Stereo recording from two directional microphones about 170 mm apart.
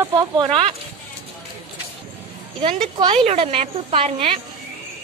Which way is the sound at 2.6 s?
30° right (ahead or behind).